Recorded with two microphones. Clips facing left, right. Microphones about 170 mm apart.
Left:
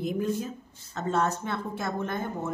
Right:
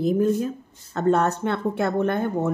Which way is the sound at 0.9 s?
60° right (ahead or behind).